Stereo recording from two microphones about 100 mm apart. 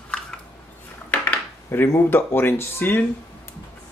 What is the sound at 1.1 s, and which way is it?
Speech, 20° left (ahead or behind).